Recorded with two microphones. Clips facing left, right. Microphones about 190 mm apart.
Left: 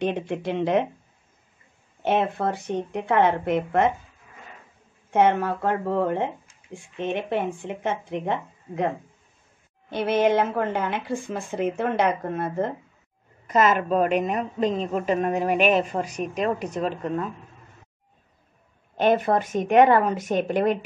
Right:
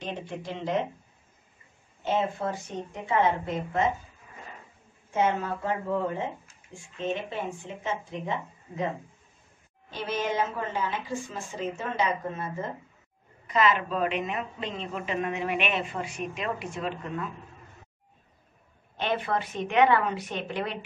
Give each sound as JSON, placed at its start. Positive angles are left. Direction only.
{"t": 0.0, "sound": "speech", "side_deg": 60}
{"t": 2.0, "sound": "speech", "side_deg": 65}
{"t": 5.1, "sound": "speech", "side_deg": 65}
{"t": 13.5, "sound": "a woman's voice", "side_deg": 45}
{"t": 18.9, "sound": "a woman's voice", "side_deg": 45}